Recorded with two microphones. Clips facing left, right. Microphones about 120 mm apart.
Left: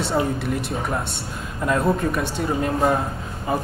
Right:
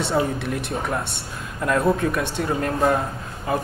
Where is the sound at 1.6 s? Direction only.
Centre (ahead or behind).